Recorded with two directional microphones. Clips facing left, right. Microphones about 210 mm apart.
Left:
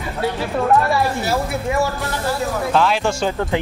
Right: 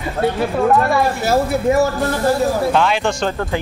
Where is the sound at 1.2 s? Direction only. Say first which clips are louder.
Right 6 dB; 40° right (ahead or behind).